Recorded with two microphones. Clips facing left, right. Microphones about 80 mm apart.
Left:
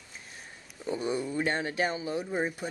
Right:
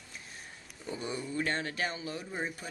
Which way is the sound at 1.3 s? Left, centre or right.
Centre.